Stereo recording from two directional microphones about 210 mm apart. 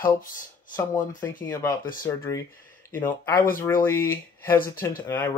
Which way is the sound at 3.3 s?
40° left (ahead or behind).